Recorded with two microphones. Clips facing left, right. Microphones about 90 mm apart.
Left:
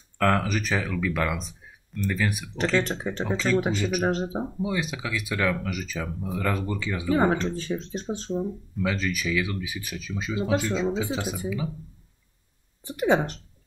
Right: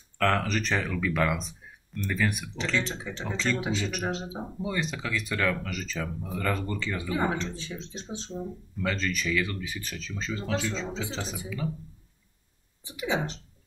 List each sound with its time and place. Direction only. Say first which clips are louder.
0.2 s speech: left 2 dB; 5° left (ahead or behind)
2.5 s speech: left 5 dB; 50° left (ahead or behind)
3.7 s speech: left 5 dB; 5° left (ahead or behind)
4.0 s speech: left 7 dB; 45° left (ahead or behind)
4.6 s speech: right 1 dB; 5° left (ahead or behind)
7.1 s speech: left 7 dB; 45° left (ahead or behind)
8.7 s speech: left 2 dB; 5° left (ahead or behind)
12.8 s speech: left 7 dB; 50° left (ahead or behind)